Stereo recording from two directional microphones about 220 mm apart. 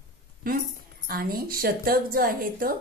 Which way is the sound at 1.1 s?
40° right (ahead or behind).